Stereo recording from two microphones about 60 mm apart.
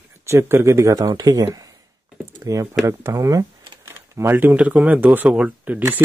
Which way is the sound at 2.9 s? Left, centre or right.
Right.